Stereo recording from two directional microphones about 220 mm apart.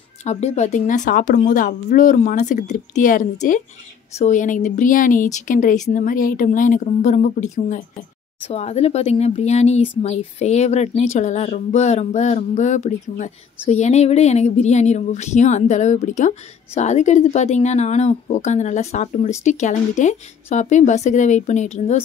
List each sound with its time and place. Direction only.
0.2 s speech: 30° left (ahead or behind)